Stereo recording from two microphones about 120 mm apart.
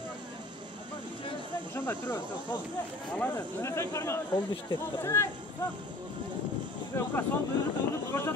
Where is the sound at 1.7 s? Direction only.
20° left (ahead or behind).